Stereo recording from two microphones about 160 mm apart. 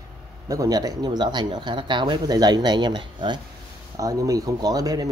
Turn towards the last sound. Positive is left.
turn(degrees=-20)  # may be behind; listen again after turning